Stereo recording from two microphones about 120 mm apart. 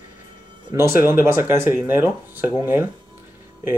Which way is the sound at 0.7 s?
20° right (ahead or behind).